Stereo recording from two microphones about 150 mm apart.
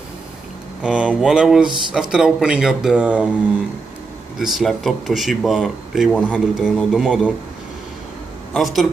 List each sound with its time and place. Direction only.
0.8 s speech: 5° right (ahead or behind)
4.4 s speech: centre (ahead or behind)
8.5 s speech: centre (ahead or behind)